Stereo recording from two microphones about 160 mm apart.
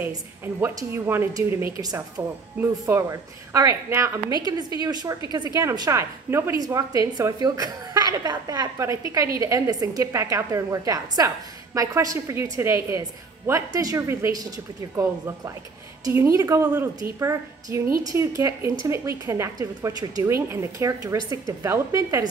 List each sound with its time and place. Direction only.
0.0 s a woman's voice: 15° right (ahead or behind)